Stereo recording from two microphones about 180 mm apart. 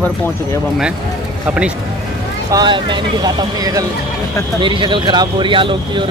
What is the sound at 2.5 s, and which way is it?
Speech, 25° right (ahead or behind).